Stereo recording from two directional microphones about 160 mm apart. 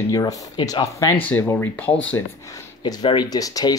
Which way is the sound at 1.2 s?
10° left (ahead or behind).